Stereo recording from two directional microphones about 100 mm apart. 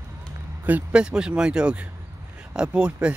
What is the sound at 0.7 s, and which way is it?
Speech, 15° right (ahead or behind).